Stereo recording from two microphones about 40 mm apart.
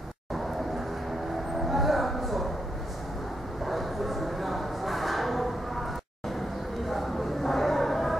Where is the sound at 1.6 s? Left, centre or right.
Centre.